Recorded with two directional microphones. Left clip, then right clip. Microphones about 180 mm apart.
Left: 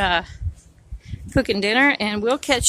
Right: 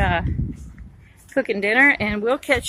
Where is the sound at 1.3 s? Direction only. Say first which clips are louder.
Even; 15° left (ahead or behind).